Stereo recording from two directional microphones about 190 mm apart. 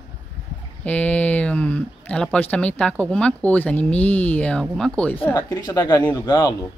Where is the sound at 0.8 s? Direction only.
5° left (ahead or behind).